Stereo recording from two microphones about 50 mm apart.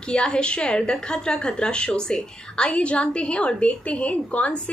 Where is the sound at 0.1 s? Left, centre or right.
Centre.